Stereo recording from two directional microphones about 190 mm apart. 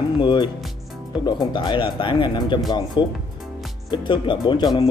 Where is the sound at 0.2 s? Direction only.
25° left (ahead or behind).